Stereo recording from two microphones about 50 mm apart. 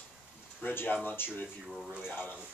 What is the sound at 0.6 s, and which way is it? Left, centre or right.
Speech, left.